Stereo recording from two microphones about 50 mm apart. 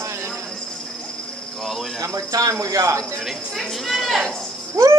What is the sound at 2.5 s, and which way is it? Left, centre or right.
Speech, right.